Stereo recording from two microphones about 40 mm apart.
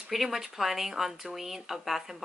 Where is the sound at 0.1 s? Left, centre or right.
Centre.